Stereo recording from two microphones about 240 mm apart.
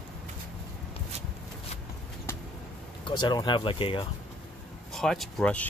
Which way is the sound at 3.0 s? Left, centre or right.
Centre.